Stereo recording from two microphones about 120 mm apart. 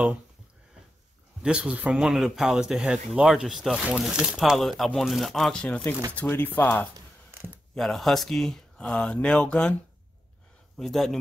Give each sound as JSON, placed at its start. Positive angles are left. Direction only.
{"t": 1.4, "sound": "speech", "side_deg": -10}
{"t": 7.2, "sound": "a sound", "side_deg": -20}
{"t": 7.7, "sound": "speech", "side_deg": 0}
{"t": 10.8, "sound": "speech", "side_deg": 0}